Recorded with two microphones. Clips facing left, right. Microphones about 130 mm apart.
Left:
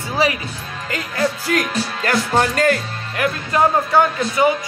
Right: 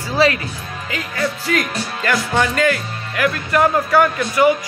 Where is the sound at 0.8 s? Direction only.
45° left (ahead or behind).